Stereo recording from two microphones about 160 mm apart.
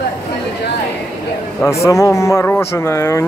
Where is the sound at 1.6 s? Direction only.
20° left (ahead or behind).